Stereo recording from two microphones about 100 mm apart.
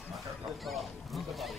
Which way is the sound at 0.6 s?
Centre (ahead or behind).